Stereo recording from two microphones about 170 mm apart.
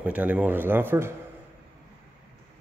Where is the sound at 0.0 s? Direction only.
10° right (ahead or behind).